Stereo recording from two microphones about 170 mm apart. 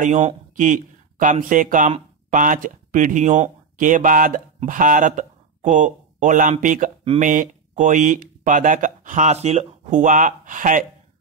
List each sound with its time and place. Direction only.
0.0 s speech: 45° right (ahead or behind)